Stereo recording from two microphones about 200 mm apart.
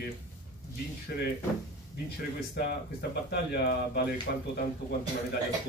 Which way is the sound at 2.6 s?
55° left (ahead or behind).